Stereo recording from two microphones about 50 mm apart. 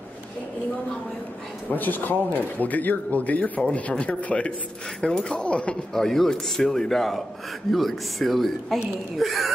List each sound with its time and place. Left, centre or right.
1.7 s speech: left
5.9 s speech: centre